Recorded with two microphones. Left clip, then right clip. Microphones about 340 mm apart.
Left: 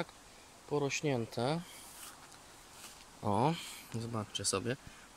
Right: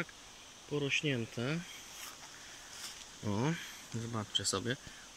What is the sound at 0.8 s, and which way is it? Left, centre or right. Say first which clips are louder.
Speech: right 4 dB; left.